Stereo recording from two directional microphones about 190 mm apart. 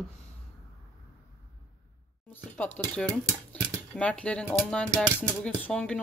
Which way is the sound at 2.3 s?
10° left (ahead or behind).